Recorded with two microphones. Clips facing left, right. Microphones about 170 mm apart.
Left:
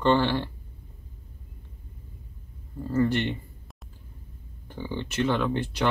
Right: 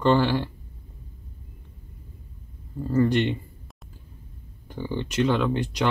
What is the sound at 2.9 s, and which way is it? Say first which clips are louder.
Speech: right 3 dB; 15° right (ahead or behind).